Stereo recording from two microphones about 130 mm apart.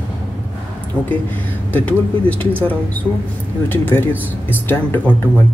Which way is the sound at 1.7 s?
10° left (ahead or behind).